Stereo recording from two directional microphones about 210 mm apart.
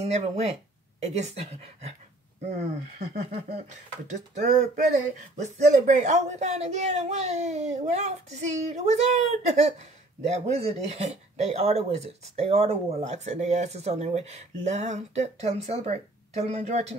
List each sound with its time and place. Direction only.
0.0 s speech: 30° right (ahead or behind)